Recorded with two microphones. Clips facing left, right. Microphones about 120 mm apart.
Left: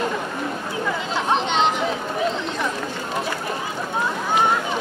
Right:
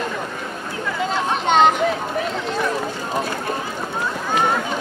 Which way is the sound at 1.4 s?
50° right (ahead or behind).